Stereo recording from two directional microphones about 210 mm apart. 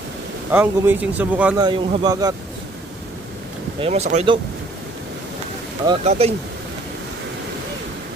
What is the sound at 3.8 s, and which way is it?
Speech, 30° right (ahead or behind).